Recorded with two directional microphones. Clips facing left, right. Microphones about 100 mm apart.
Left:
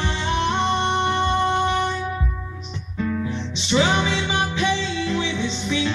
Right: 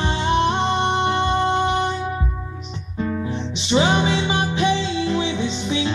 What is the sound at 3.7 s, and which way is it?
Music, 25° right (ahead or behind).